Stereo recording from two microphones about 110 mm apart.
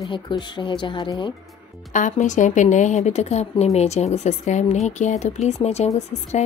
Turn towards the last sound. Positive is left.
turn(degrees=75)  # may be behind; listen again after turning